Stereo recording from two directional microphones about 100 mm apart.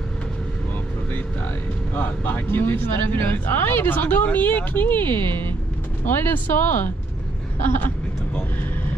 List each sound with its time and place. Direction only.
2.0 s speech: 20° left (ahead or behind)